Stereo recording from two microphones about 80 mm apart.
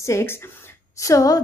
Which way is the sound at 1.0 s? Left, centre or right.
Left.